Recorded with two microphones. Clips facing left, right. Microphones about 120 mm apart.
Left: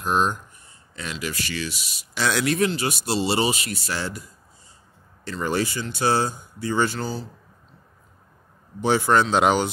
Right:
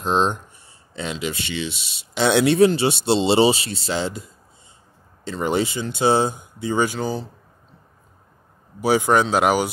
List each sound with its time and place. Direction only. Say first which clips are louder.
0.0 s speech: right 2 dB; 25° right (ahead or behind)
8.8 s speech: right 2 dB; 10° right (ahead or behind)